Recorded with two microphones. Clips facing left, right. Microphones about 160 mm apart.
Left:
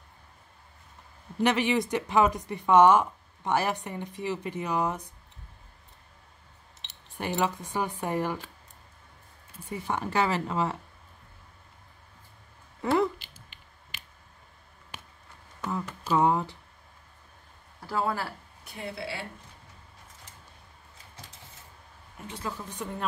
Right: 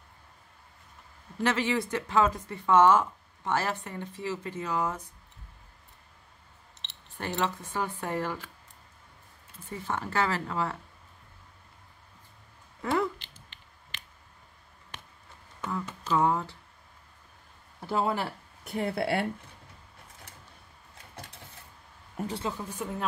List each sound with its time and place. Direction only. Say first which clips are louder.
1.4 s speech: left 3 dB; 15° left (ahead or behind)
6.8 s a sound: right 1 dB; centre (ahead or behind)
7.2 s speech: left 2 dB; 10° left (ahead or behind)
9.7 s speech: left 2 dB; 15° left (ahead or behind)
13.9 s a sound: even; 10° left (ahead or behind)
16.0 s speech: left 2 dB; 15° left (ahead or behind)
17.8 s speech: right 1 dB; 20° right (ahead or behind)
18.6 s speech: right 8 dB; 55° right (ahead or behind)
22.3 s speech: right 1 dB; 25° right (ahead or behind)
22.7 s speech: right 1 dB; 5° right (ahead or behind)